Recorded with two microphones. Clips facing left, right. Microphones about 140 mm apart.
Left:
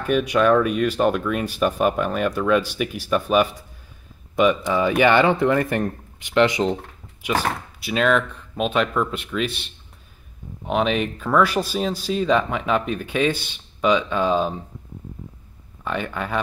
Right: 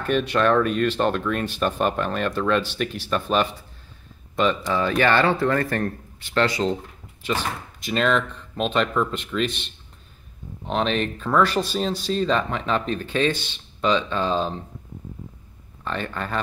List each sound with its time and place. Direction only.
0.0 s speech: 10° left (ahead or behind)
4.6 s speech: 15° left (ahead or behind)
10.7 s speech: 10° left (ahead or behind)
15.8 s speech: 10° left (ahead or behind)